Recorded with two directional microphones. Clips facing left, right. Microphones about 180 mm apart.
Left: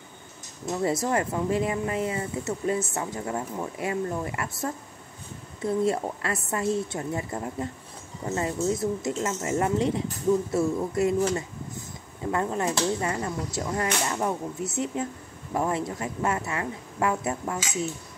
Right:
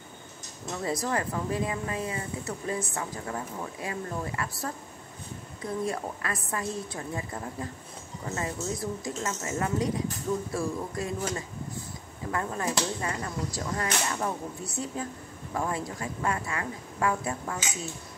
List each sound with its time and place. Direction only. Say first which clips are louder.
0.7 s speech: left 5 dB; 25° left (ahead or behind)